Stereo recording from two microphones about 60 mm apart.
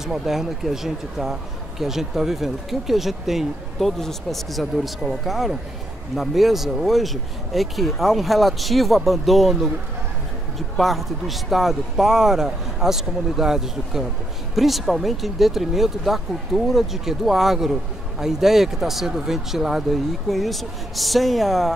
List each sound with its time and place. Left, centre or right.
0.0 s a man's voice: centre
10.8 s a man's voice: centre